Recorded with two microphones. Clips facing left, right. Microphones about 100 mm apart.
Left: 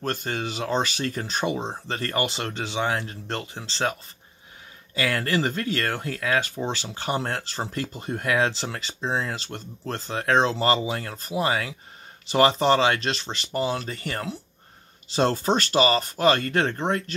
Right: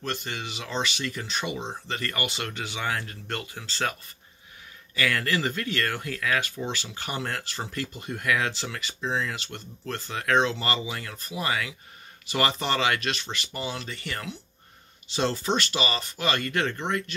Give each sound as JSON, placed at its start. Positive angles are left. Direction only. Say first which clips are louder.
{"t": 0.0, "sound": "speech", "louder": "left 5 dB", "side_deg": 40}
{"t": 4.9, "sound": "speech", "louder": "left 2 dB", "side_deg": 30}